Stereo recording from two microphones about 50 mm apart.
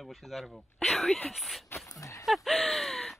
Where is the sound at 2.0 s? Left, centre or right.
Left.